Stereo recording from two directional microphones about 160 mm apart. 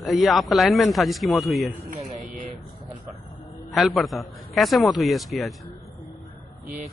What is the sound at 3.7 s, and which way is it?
A man's voice, centre (ahead or behind).